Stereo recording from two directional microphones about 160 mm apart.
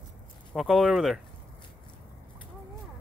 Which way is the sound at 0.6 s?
Centre (ahead or behind).